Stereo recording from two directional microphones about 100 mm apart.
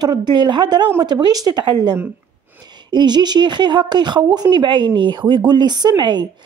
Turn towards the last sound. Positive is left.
turn(degrees=-45)  # may be behind; listen again after turning